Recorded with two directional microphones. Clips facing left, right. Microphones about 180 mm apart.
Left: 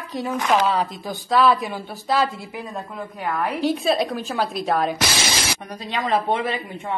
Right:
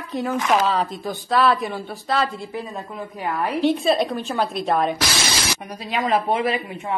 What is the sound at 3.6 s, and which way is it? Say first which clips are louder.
A woman's voice: right 2 dB; centre (ahead or behind).